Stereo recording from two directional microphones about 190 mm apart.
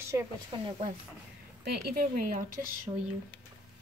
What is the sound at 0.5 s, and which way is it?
Speech, 25° right (ahead or behind).